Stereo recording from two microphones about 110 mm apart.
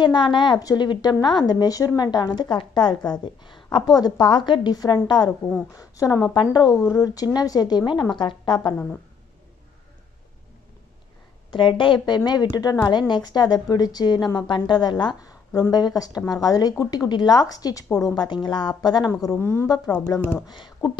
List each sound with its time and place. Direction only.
0.0 s a woman's voice: 45° left (ahead or behind)
11.5 s a woman's voice: 50° left (ahead or behind)
12.3 s a woman's voice: 35° left (ahead or behind)
19.3 s speech: 20° left (ahead or behind)
20.1 s a woman's voice: 35° left (ahead or behind)